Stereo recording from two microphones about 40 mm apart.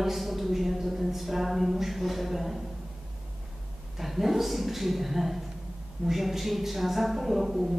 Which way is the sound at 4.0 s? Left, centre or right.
Centre.